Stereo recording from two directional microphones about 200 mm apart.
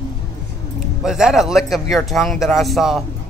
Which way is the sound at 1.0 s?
5° right (ahead or behind).